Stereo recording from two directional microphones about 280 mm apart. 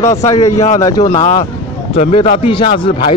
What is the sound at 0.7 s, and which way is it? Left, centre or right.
A man's voice, centre.